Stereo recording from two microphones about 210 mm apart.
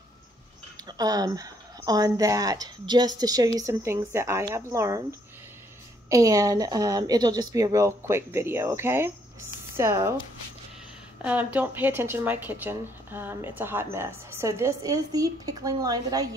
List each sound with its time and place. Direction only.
0.8 s speech: 20° right (ahead or behind)
6.0 s speech: 15° right (ahead or behind)
11.2 s speech: 5° right (ahead or behind)